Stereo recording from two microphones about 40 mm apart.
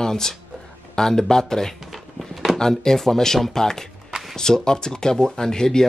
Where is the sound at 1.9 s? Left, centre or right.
Centre.